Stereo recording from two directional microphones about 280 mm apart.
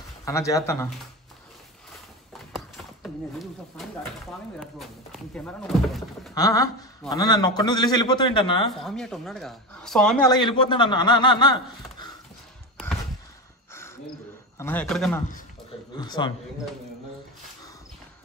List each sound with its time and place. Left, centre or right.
0.2 s a man's voice: centre
2.5 s horse: centre
4.6 s speech: centre
6.3 s a man's voice: centre
8.7 s speech: centre
10.3 s a man's voice: centre
14.6 s speech: centre
16.0 s a man's voice: centre